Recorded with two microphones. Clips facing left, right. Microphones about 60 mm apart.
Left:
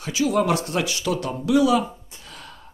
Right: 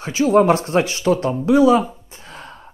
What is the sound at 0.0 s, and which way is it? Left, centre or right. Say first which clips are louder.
Speech: right 7 dB; right.